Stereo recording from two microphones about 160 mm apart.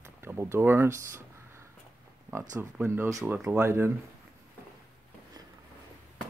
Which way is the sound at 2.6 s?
15° right (ahead or behind).